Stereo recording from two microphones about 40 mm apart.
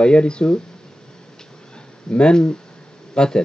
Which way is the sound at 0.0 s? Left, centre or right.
Left.